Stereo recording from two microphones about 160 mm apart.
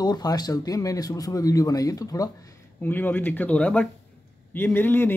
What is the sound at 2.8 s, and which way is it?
Speech, 10° left (ahead or behind).